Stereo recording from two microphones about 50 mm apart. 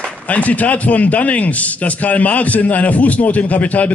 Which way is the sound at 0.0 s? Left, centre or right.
Left.